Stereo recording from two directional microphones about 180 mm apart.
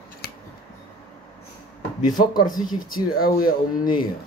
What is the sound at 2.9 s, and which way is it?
Speech, 55° left (ahead or behind).